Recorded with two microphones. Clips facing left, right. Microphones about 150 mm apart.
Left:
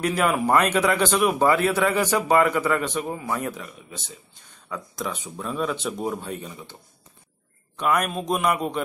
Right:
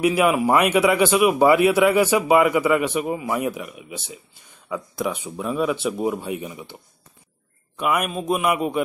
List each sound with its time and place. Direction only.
0.0 s a man's voice: 10° right (ahead or behind)